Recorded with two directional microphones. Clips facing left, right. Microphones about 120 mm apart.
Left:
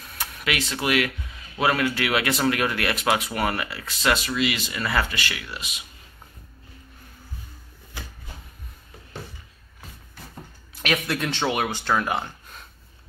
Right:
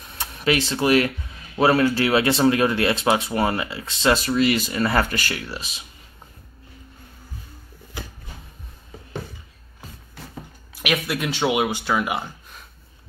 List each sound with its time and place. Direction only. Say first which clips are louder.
0.0 s a sound: right 6 dB; 25° right (ahead or behind)
1.6 s speech: right 5 dB; 35° right (ahead or behind)
4.2 s speech: right 6 dB; 40° right (ahead or behind)
10.7 s speech: right 1 dB; 5° right (ahead or behind)